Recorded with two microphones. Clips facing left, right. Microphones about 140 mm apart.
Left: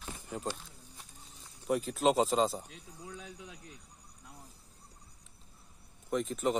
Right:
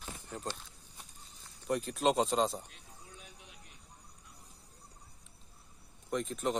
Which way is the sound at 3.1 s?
90° left.